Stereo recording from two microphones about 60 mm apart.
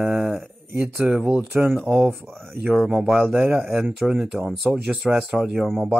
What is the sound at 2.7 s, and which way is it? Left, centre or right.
Speech, centre.